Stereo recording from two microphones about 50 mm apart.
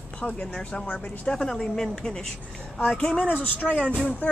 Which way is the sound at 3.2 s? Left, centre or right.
Left.